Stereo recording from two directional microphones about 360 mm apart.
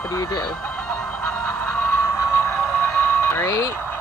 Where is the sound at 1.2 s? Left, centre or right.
Centre.